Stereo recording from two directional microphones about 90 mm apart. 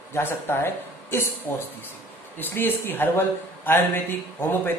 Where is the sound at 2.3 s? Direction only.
25° left (ahead or behind).